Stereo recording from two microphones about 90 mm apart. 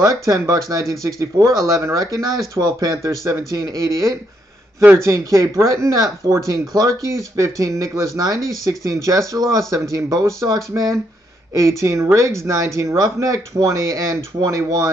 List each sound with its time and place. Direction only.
0.0 s speech: 40° right (ahead or behind)